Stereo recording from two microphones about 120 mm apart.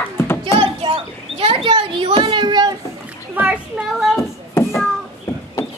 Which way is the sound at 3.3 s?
15° right (ahead or behind).